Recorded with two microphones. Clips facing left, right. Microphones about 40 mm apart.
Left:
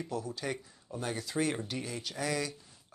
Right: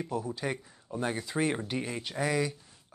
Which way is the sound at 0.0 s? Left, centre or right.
Centre.